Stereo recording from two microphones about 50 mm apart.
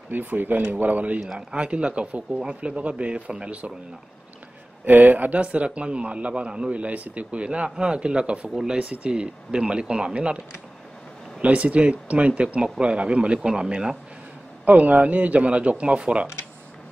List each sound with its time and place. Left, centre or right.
0.1 s speech: right
1.5 s a man's voice: right
4.8 s a man's voice: right
11.4 s a man's voice: right
14.6 s a man's voice: right